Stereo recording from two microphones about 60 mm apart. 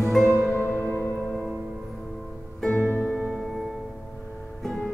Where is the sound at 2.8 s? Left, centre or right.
Centre.